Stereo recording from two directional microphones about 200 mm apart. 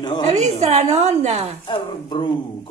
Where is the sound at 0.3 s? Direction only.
35° right (ahead or behind).